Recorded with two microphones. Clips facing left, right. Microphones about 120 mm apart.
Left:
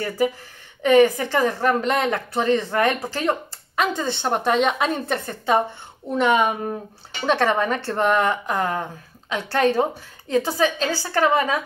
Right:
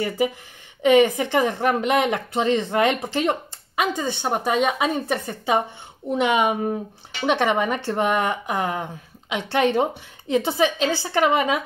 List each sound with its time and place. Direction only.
0.8 s a woman's voice: 20° right (ahead or behind)